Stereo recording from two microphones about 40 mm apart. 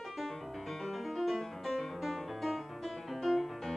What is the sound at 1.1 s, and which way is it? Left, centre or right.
Music, centre.